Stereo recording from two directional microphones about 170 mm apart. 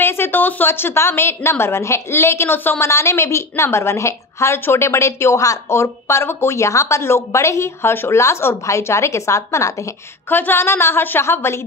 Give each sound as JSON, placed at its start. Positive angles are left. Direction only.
{"t": 0.0, "sound": "a woman's voice", "side_deg": 15}